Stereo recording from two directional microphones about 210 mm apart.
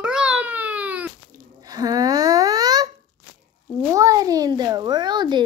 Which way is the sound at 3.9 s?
15° right (ahead or behind).